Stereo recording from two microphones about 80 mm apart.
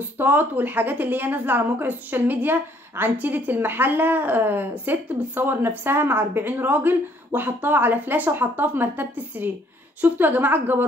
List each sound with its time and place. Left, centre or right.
0.2 s a woman's voice: right